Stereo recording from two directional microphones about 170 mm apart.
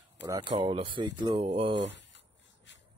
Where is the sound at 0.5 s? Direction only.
35° right (ahead or behind).